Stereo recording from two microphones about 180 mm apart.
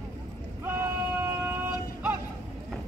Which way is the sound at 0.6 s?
15° right (ahead or behind).